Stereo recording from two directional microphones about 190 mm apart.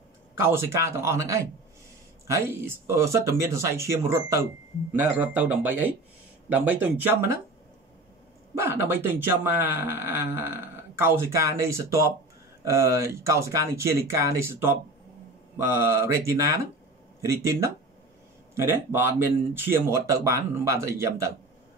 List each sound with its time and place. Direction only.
0.4 s speech: 15° right (ahead or behind)
8.5 s speech: 15° right (ahead or behind)